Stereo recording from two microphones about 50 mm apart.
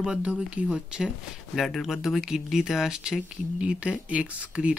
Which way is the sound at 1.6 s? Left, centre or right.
Centre.